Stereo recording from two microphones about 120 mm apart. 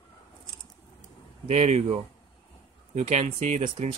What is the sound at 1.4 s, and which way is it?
Speech, 65° right (ahead or behind).